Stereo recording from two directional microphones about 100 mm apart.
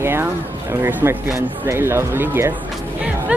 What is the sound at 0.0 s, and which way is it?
Speech, 25° right (ahead or behind).